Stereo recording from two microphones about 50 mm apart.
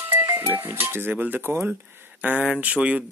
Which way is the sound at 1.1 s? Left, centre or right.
Right.